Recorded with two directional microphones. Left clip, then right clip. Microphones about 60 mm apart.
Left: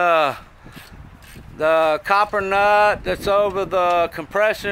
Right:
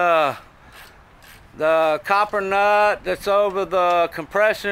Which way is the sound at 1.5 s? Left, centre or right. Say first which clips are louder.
Left 1 dB; left.